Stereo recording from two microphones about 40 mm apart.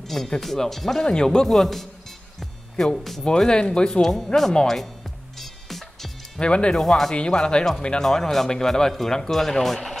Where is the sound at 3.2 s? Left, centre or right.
Centre.